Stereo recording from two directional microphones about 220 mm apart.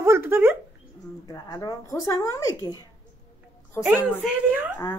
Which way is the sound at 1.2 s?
20° left (ahead or behind).